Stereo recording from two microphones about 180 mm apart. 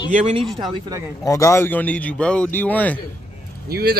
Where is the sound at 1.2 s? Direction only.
15° left (ahead or behind).